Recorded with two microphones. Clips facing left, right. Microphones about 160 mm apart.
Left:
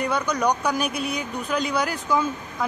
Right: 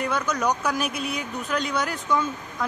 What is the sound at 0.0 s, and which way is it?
Speech, centre (ahead or behind).